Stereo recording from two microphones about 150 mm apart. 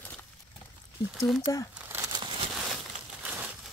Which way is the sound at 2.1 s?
35° right (ahead or behind).